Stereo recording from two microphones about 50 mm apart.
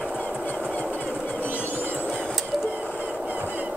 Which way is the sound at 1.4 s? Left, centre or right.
Left.